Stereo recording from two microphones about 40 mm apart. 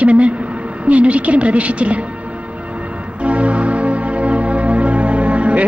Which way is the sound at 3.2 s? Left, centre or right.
Right.